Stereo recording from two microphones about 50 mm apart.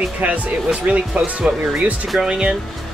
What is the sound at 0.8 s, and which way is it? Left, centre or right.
Speech, right.